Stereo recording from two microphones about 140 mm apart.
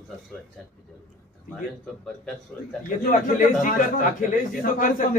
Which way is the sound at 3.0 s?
85° left.